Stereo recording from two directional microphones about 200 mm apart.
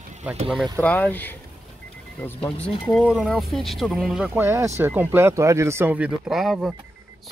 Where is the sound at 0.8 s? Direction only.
10° left (ahead or behind).